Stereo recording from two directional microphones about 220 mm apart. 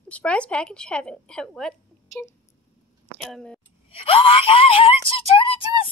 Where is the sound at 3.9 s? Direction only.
25° left (ahead or behind).